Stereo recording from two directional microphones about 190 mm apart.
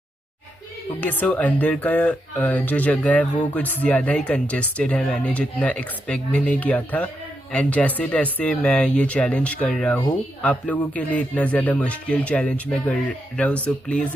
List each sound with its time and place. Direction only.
1.0 s speech: 10° left (ahead or behind)